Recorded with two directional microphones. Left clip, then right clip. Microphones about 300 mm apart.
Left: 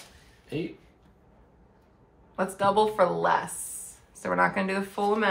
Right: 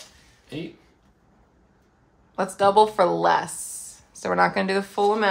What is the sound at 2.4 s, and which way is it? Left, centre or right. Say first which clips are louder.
Speech: right 6 dB; right.